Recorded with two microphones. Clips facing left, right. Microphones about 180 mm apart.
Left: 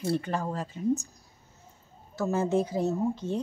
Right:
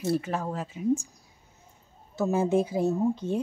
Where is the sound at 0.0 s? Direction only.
5° right (ahead or behind).